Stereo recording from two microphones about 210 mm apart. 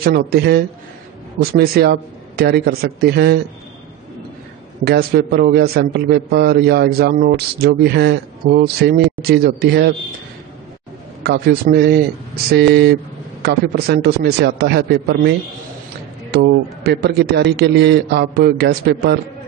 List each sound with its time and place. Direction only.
0.0 s a man's voice: 45° right (ahead or behind)
4.8 s a man's voice: 50° right (ahead or behind)
11.2 s a man's voice: 50° right (ahead or behind)
16.8 s a man's voice: 50° right (ahead or behind)